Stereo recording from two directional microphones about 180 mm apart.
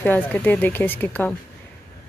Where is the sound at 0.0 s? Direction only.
10° left (ahead or behind).